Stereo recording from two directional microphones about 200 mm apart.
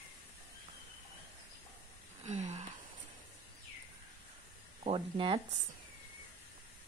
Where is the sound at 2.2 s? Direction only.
35° right (ahead or behind).